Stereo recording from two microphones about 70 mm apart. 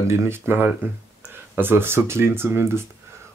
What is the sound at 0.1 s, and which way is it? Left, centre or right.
Speech, right.